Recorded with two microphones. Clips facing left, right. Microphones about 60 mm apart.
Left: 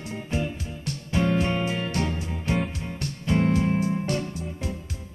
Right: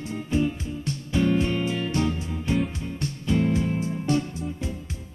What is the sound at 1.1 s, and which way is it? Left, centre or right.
Music, left.